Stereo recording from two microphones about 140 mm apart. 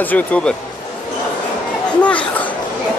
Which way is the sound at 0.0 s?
10° left (ahead or behind).